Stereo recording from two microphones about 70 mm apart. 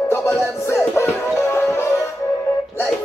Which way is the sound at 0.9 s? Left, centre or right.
Left.